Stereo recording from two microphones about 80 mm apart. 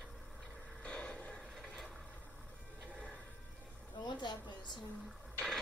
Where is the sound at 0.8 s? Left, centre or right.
Centre.